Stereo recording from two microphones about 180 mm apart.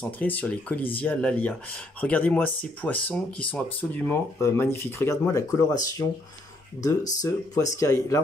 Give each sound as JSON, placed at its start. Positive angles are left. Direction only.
{"t": 0.2, "sound": "speech", "side_deg": 10}